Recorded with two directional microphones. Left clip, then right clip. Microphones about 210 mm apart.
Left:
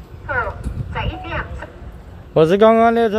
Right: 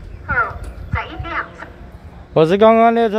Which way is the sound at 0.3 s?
30° right (ahead or behind).